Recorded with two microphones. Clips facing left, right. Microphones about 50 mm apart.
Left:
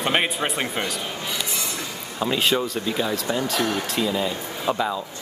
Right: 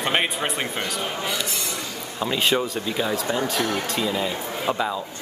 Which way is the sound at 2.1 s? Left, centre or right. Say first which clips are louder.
Even; centre.